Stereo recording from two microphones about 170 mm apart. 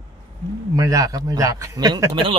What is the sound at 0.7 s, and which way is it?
Speech, 20° right (ahead or behind).